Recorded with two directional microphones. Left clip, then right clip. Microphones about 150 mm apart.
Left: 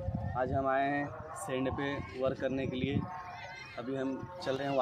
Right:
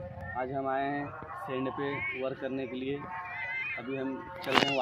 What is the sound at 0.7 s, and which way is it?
Speech, 50° left (ahead or behind).